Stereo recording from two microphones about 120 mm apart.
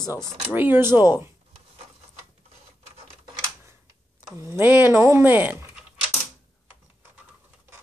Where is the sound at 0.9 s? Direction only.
35° left (ahead or behind).